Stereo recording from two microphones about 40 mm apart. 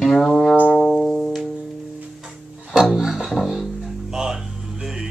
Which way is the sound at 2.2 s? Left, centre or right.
Centre.